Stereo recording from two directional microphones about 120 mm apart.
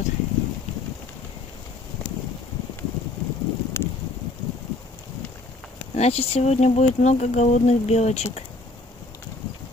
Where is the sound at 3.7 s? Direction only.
20° left (ahead or behind).